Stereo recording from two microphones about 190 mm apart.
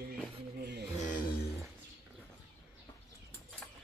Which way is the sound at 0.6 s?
60° right (ahead or behind).